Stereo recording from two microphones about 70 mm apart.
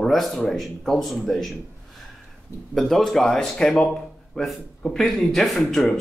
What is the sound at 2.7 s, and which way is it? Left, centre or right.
A man's voice, centre.